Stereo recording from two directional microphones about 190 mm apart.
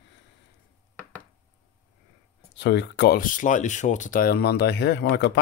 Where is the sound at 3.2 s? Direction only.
45° left (ahead or behind); by 5.4 s 65° left (ahead or behind).